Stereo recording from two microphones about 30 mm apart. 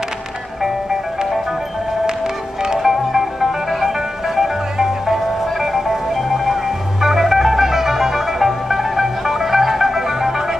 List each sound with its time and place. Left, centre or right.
2.6 s music: centre
2.9 s music: centre